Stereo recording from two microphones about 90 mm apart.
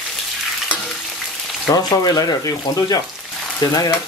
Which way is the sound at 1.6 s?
45° left (ahead or behind).